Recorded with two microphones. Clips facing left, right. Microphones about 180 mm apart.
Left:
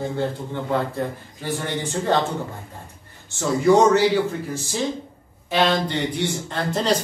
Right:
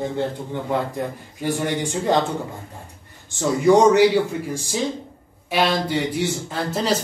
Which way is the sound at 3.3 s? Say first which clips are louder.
Right 1 dB; 15° right (ahead or behind).